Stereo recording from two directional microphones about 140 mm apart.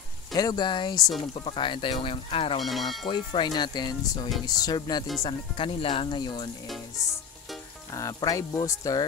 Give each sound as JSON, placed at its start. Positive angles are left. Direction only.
{"t": 0.3, "sound": "speech", "side_deg": 30}
{"t": 2.6, "sound": "speech", "side_deg": 0}
{"t": 3.1, "sound": "speech", "side_deg": 35}
{"t": 5.2, "sound": "speech", "side_deg": 40}
{"t": 7.9, "sound": "speech", "side_deg": 25}